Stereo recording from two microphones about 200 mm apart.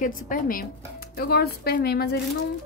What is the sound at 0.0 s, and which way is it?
Speech, 45° left (ahead or behind).